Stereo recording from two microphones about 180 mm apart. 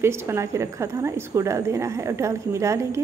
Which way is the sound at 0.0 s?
15° right (ahead or behind).